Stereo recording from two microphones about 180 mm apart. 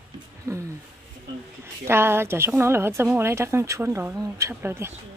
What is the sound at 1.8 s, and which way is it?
A woman's voice, 15° right (ahead or behind).